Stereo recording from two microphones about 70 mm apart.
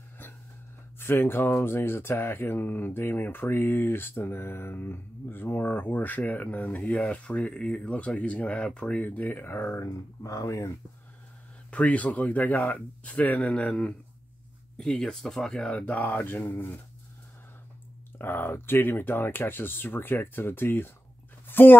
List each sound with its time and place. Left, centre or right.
0.9 s speech: left
9.8 s speech: left
11.7 s speech: centre
15.9 s speech: left
18.1 s speech: left
21.5 s a sound: left